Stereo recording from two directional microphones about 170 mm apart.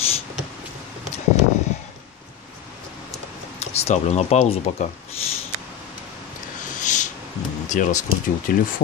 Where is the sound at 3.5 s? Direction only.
40° left (ahead or behind).